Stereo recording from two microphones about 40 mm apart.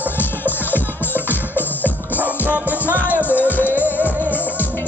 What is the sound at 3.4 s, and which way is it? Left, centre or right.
Music, left.